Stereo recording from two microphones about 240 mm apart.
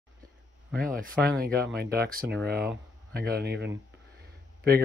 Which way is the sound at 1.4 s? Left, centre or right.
Right.